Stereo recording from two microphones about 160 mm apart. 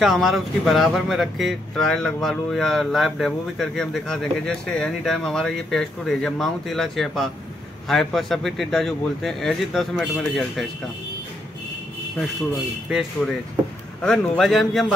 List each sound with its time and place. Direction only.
0.0 s speech: centre (ahead or behind)
14.0 s speech: 5° left (ahead or behind)